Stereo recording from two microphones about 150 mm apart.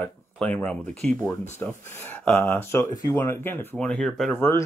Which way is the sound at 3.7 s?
5° left (ahead or behind).